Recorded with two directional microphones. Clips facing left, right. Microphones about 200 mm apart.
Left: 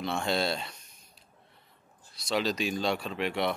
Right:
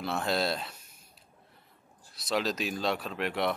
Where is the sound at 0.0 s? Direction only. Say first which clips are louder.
Even; centre (ahead or behind).